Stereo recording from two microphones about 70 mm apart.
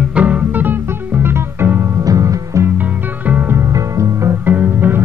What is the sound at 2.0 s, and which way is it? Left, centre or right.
Music, right.